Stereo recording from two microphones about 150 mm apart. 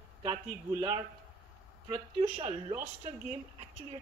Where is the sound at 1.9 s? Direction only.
35° right (ahead or behind).